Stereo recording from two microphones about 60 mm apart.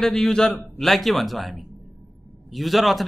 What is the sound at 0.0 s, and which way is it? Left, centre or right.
A man's voice, centre.